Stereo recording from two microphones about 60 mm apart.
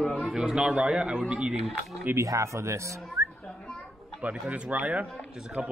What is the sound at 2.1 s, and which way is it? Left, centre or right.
Speech, right.